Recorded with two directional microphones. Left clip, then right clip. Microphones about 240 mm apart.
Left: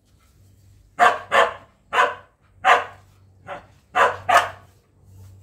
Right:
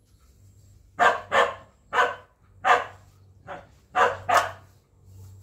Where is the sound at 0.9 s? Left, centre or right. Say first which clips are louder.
Left 4 dB; left.